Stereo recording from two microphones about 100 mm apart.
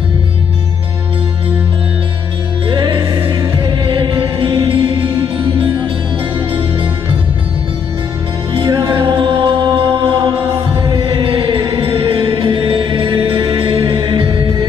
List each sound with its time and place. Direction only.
2.7 s music: 50° right (ahead or behind)
8.5 s music: 50° right (ahead or behind)